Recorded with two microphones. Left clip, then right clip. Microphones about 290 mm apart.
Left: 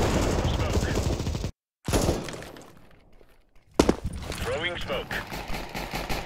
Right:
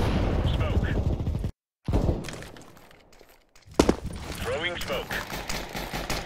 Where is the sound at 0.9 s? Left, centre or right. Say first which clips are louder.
Left 3 dB; left.